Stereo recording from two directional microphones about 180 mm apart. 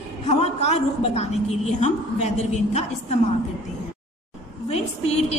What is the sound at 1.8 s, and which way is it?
A woman's voice, 40° left (ahead or behind).